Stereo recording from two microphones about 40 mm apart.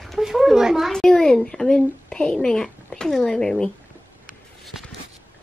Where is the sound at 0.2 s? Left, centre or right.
Centre.